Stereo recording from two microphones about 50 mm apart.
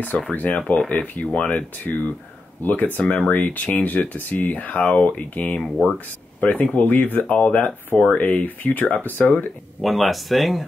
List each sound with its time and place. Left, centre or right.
0.3 s speech: left
1.2 s speech: left
1.9 s speech: left
6.4 s speech: left
9.8 s speech: centre